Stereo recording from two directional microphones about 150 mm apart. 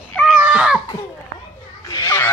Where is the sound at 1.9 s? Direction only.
20° left (ahead or behind).